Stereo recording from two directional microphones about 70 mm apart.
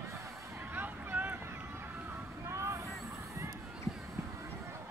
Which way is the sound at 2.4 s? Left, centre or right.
Right.